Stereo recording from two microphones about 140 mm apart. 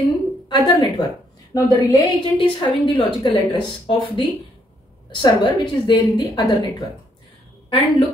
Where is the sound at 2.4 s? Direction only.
35° left (ahead or behind).